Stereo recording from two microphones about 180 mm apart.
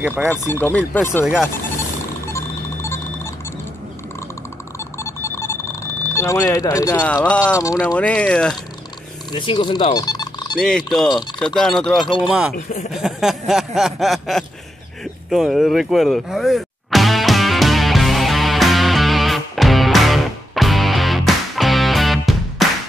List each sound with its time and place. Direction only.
0.0 s speech: 10° right (ahead or behind)
0.3 s speech: 10° left (ahead or behind)
1.2 s speech: 5° right (ahead or behind)
2.2 s a sound: 15° left (ahead or behind)
4.7 s a sound: 15° left (ahead or behind)
7.2 s speech: 5° left (ahead or behind)
7.5 s speech: 20° left (ahead or behind)
8.0 s speech: 5° left (ahead or behind)
9.3 s speech: 25° left (ahead or behind)
9.9 s music: 20° left (ahead or behind)
10.5 s speech: centre (ahead or behind)
12.9 s a sound: centre (ahead or behind)
15.2 s music: centre (ahead or behind)